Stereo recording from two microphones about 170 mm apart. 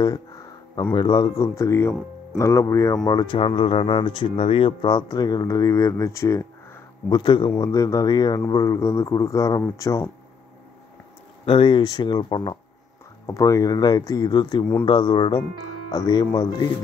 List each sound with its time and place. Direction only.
0.9 s speech: 25° left (ahead or behind)
11.4 s speech: 30° left (ahead or behind)